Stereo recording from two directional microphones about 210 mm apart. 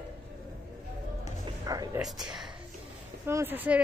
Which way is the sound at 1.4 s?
15° right (ahead or behind).